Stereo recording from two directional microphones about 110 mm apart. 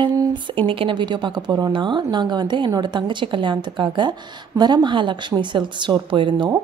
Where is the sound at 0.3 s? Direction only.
50° right (ahead or behind).